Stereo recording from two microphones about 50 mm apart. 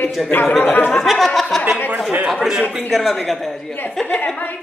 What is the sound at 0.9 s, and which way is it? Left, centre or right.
Speech, centre.